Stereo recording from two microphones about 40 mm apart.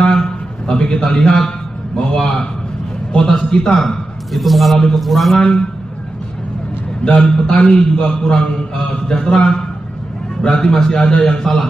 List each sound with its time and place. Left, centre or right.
0.0 s a sound: centre
2.0 s a man's voice: centre
4.3 s a man's voice: centre
5.4 s a man's voice: left
7.1 s a man's voice: left